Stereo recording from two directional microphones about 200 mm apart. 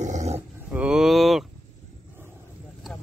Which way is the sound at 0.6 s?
5° right (ahead or behind).